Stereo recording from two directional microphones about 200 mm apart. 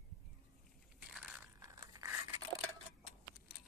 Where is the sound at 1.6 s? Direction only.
15° right (ahead or behind).